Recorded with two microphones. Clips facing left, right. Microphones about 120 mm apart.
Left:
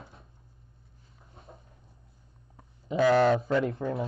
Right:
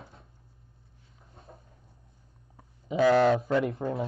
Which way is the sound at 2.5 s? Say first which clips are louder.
Even; centre (ahead or behind).